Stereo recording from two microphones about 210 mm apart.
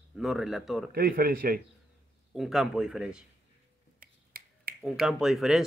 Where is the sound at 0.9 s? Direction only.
45° right (ahead or behind).